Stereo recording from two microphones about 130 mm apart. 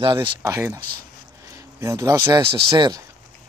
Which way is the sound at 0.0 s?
40° right (ahead or behind).